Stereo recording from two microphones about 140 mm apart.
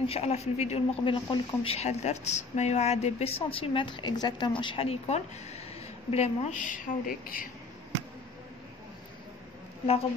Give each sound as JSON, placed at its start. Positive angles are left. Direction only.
{"t": 0.0, "sound": "speech", "side_deg": 45}